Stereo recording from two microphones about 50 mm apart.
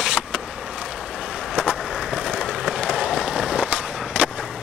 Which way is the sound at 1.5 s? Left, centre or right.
Right.